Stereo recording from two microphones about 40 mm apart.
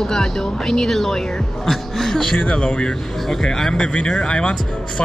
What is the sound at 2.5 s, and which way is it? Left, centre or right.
Speech, left.